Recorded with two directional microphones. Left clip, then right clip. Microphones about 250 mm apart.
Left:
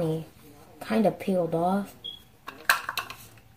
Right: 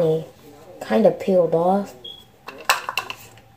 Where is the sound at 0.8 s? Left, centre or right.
Right.